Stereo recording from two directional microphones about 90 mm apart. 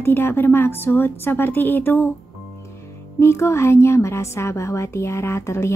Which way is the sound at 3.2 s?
30° left (ahead or behind).